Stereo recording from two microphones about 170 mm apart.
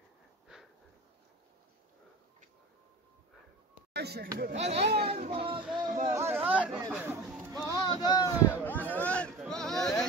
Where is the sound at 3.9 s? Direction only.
70° right (ahead or behind).